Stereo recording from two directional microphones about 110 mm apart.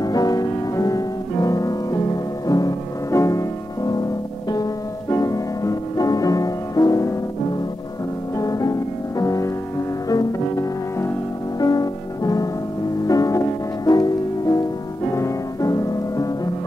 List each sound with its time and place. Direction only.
0.0 s music: 35° left (ahead or behind)
5.1 s music: 30° left (ahead or behind)
8.4 s music: 30° left (ahead or behind)
11.6 s music: 35° left (ahead or behind)